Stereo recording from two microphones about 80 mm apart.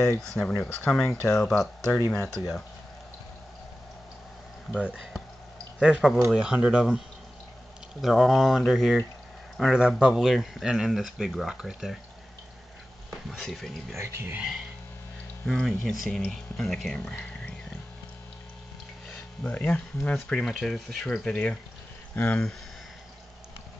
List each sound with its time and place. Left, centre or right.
0.2 s speech: centre
1.0 s speech: left
1.4 s speech: centre
4.7 s speech: centre
8.0 s speech: centre
13.4 s speech: centre
13.9 s speech: right
15.4 s speech: centre
19.4 s speech: centre
21.2 s speech: centre